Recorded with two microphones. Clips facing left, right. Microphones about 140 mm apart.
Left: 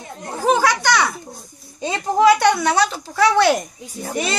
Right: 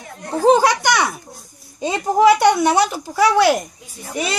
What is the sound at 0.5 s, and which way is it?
Children playing, 20° right (ahead or behind).